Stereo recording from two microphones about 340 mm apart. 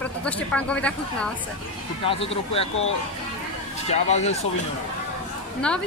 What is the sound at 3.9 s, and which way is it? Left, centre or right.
Speech, centre.